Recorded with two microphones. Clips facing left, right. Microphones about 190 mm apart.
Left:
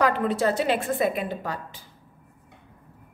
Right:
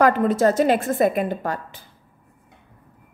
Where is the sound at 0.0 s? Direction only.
45° right (ahead or behind).